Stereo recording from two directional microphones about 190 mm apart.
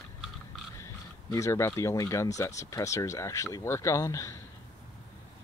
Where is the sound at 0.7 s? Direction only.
15° left (ahead or behind).